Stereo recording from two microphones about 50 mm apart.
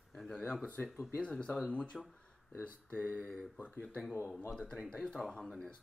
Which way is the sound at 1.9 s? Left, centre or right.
Centre.